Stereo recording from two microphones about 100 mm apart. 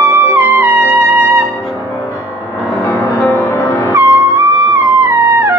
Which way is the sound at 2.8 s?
35° left (ahead or behind).